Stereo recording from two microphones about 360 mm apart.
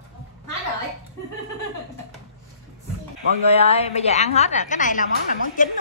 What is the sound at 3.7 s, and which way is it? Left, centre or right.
A woman's voice, centre.